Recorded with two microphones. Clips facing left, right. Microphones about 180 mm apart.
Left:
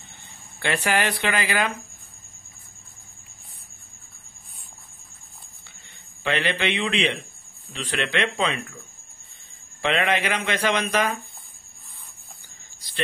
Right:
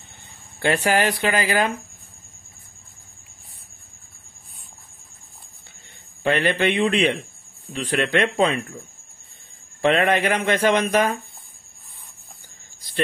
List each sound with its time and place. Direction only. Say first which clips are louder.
0.6 s speech: right 4 dB; 40° right (ahead or behind)
6.2 s speech: right 5 dB; 45° right (ahead or behind)
9.8 s speech: right 5 dB; 45° right (ahead or behind)